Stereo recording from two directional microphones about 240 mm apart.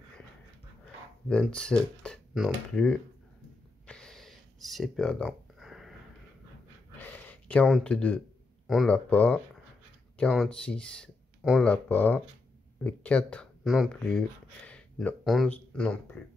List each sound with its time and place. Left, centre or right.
1.3 s speech: centre
3.8 s a sound: centre
7.0 s gasp: centre
8.6 s speech: centre